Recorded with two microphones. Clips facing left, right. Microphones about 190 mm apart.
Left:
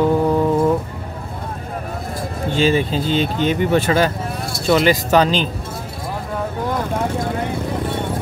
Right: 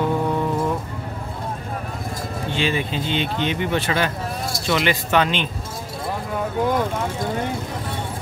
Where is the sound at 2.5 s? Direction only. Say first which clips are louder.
Left 7 dB; 40° left (ahead or behind).